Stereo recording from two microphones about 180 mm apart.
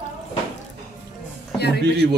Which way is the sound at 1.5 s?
65° left (ahead or behind).